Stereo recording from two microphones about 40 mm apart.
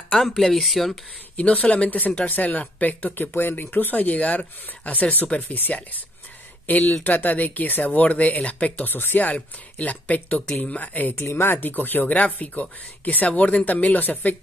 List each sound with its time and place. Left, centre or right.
0.4 s speech: centre
1.3 s speech: left
3.2 s speech: left
3.7 s speech: left
7.9 s speech: left
8.9 s speech: left
9.3 s speech: left
11.3 s speech: left
12.1 s speech: left